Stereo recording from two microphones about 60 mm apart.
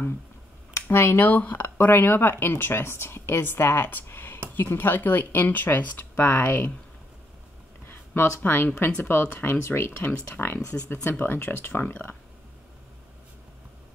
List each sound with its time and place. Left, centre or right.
0.8 s speech: left
1.2 s a woman's voice: left
7.8 s a woman's voice: left